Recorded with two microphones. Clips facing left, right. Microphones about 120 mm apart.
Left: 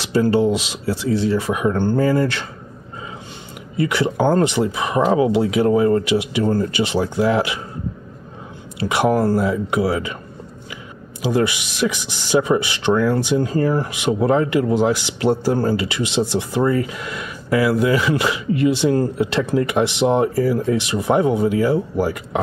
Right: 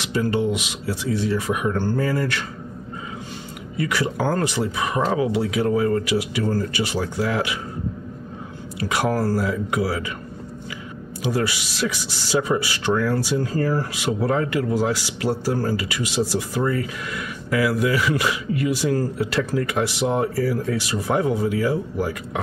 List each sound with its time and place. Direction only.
0.0 s speech: 30° left (ahead or behind)
3.7 s speech: 25° left (ahead or behind)
8.7 s speech: 20° left (ahead or behind)
11.3 s speech: 20° left (ahead or behind)